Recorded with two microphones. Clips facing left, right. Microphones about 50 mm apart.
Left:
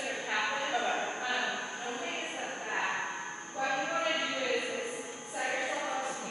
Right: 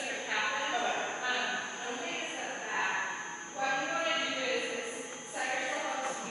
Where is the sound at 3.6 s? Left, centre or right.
Centre.